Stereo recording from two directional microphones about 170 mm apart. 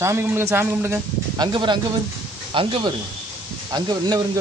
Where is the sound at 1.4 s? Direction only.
25° right (ahead or behind).